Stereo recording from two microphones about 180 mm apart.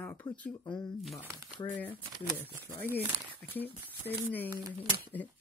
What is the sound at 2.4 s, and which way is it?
Speech, 10° left (ahead or behind).